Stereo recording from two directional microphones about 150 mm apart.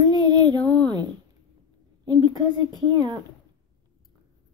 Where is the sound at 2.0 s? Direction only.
25° right (ahead or behind).